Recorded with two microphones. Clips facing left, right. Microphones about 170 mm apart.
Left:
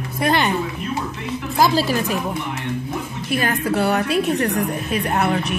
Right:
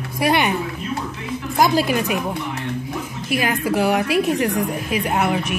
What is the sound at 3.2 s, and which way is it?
A woman's voice, 10° right (ahead or behind).